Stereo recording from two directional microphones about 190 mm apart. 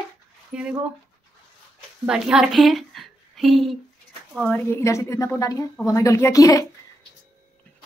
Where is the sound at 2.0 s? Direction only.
5° right (ahead or behind); by 6.6 s 15° left (ahead or behind).